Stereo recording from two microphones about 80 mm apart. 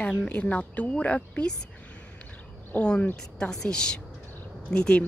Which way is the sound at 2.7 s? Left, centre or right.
Centre.